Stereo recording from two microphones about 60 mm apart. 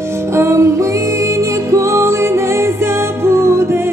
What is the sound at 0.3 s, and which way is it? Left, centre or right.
Music, right.